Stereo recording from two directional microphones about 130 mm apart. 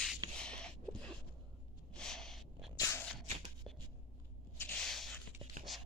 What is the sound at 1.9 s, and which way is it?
Snort, 5° left (ahead or behind).